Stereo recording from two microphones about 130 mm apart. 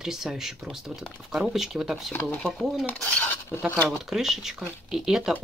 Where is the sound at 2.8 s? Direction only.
10° left (ahead or behind).